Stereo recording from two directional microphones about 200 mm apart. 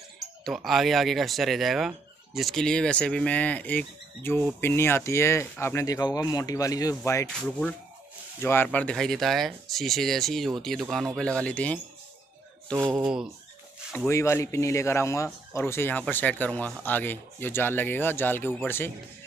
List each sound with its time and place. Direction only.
0.4 s speech: centre (ahead or behind)
12.7 s speech: 20° right (ahead or behind)
13.0 s speech: 5° right (ahead or behind)
13.9 s speech: 15° left (ahead or behind)